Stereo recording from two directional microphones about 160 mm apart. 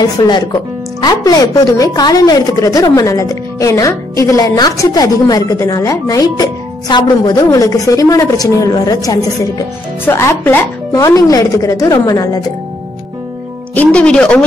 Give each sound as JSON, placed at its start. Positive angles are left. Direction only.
{"t": 0.2, "sound": "a woman's voice", "side_deg": 30}
{"t": 13.7, "sound": "speech", "side_deg": 5}